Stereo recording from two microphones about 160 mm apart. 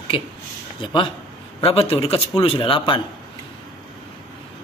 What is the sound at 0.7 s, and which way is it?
A man's voice, 30° left (ahead or behind).